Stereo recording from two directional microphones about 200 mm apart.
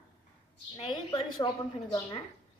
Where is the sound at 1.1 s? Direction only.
20° left (ahead or behind).